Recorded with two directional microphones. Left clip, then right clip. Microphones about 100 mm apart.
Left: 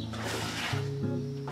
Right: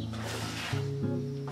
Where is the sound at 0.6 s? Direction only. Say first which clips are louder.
Left 2 dB; centre (ahead or behind).